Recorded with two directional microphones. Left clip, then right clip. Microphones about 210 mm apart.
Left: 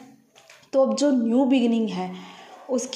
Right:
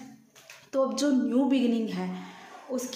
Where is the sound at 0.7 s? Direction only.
20° left (ahead or behind).